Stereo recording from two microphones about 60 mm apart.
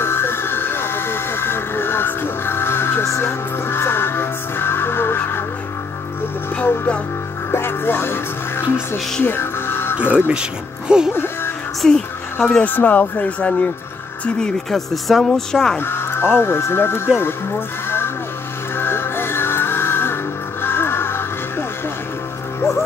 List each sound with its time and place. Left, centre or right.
0.0 s vehicle: left
3.1 s music: left
7.5 s music: left
10.1 s speech: right
10.9 s music: centre
11.8 s a woman's voice: centre
12.6 s speech: left
14.7 s speech: centre
15.8 s speech: left
17.8 s music: left